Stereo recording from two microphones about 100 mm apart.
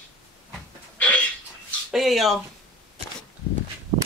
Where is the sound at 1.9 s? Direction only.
Centre (ahead or behind).